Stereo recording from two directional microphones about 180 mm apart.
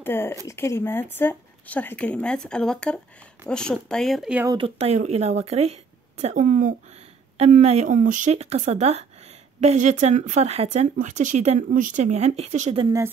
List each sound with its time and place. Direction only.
0.0 s speech: 10° left (ahead or behind); by 4.5 s 5° right (ahead or behind)
4.5 s speech: 30° right (ahead or behind)